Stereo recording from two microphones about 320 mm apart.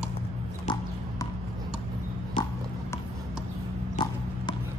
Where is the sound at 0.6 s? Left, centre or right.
Centre.